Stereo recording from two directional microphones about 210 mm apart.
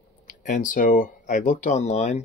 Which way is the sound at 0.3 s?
40° left (ahead or behind).